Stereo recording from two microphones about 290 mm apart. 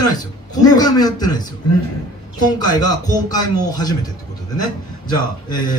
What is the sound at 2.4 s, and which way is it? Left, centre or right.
A man's voice, centre.